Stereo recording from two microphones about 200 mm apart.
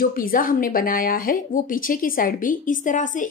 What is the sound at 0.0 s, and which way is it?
A woman's voice, 45° left (ahead or behind).